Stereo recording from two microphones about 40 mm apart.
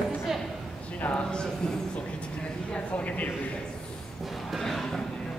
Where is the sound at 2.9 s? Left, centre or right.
Left.